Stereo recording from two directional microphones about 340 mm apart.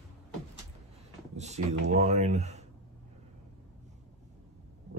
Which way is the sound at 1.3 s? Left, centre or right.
Centre.